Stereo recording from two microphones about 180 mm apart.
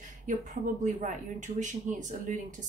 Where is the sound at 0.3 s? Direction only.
45° right (ahead or behind).